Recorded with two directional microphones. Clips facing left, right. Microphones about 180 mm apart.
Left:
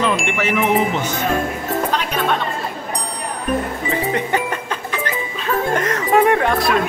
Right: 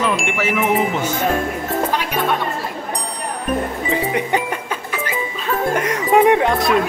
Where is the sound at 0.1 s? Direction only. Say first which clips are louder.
Even; 5° right (ahead or behind).